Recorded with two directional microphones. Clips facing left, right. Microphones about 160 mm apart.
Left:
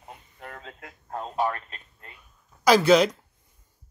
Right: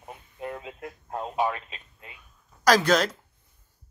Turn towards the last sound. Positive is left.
turn(degrees=10)  # may be behind; listen again after turning